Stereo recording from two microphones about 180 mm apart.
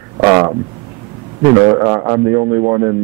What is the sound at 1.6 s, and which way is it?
A man's voice, 25° right (ahead or behind).